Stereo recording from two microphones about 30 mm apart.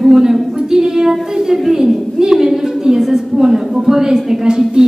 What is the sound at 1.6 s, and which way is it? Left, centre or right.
Speech, centre.